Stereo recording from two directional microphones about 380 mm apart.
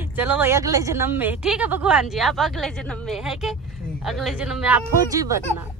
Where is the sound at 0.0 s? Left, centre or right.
Centre.